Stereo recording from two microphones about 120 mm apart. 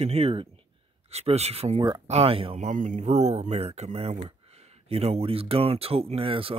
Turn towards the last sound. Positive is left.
turn(degrees=-50)  # may be behind; listen again after turning